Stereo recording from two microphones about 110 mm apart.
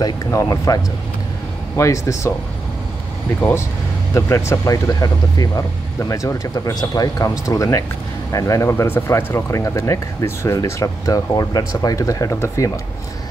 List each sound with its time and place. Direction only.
0.3 s speech: 30° left (ahead or behind)
1.8 s speech: 25° left (ahead or behind)
4.1 s speech: 25° left (ahead or behind)